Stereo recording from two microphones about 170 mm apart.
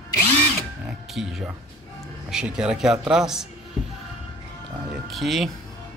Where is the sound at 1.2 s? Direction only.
5° right (ahead or behind).